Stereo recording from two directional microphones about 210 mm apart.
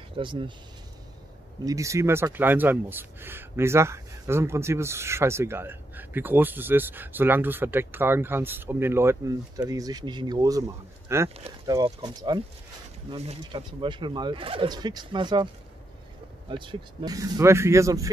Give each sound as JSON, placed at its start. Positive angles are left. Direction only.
{"t": 0.2, "sound": "speech", "side_deg": -25}
{"t": 1.6, "sound": "speech", "side_deg": -15}
{"t": 16.4, "sound": "speech", "side_deg": -25}